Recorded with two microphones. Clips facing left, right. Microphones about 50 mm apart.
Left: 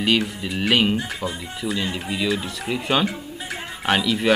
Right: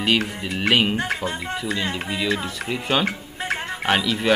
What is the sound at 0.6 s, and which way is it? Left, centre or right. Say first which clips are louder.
Speech: even; centre.